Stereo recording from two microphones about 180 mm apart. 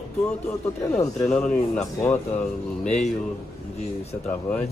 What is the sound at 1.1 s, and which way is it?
A man's voice, 5° left (ahead or behind).